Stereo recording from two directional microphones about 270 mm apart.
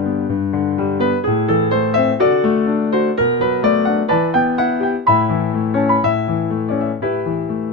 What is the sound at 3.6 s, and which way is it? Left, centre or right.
Music, centre.